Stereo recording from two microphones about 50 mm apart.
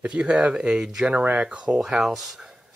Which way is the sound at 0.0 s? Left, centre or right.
Right.